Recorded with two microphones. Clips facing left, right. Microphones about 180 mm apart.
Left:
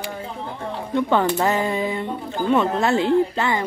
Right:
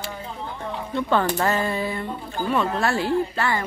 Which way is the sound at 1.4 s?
15° left (ahead or behind).